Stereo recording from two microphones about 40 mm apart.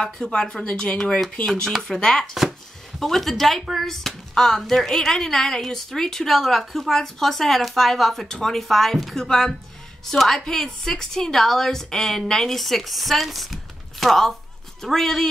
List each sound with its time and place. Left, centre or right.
0.0 s speech: left
3.0 s speech: centre